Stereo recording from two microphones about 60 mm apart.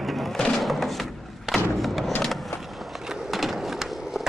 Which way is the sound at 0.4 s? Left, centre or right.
Centre.